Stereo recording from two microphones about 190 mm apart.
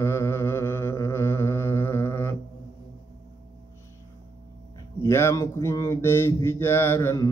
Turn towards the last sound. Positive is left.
turn(degrees=15)  # may be behind; listen again after turning